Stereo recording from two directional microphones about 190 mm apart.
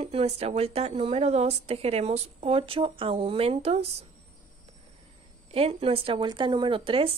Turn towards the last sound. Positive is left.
turn(degrees=-30)  # may be behind; listen again after turning